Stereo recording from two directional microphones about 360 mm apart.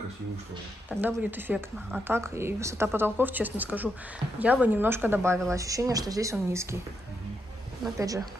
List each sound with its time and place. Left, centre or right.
0.8 s a woman's voice: centre
7.8 s a woman's voice: centre